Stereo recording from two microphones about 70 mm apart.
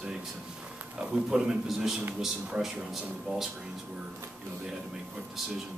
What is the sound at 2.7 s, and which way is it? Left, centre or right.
Speech, centre.